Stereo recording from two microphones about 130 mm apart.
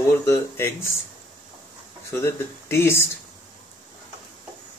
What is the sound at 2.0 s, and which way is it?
Speech, 20° left (ahead or behind).